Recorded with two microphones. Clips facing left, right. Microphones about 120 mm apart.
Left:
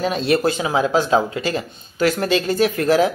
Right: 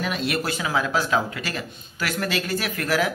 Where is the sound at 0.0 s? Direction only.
30° left (ahead or behind).